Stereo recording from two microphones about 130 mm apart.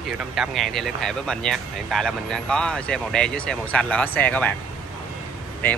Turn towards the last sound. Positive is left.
turn(degrees=10)  # may be behind; listen again after turning